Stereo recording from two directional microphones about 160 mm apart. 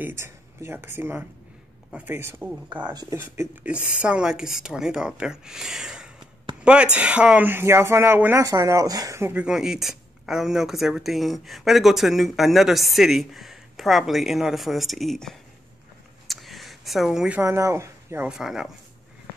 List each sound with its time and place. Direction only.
0.0 s speech: 15° right (ahead or behind)
2.9 s speech: 25° right (ahead or behind)
3.2 s speech: 10° right (ahead or behind)
16.3 s a sound: centre (ahead or behind)
17.4 s speech: 20° right (ahead or behind)
18.3 s speech: centre (ahead or behind)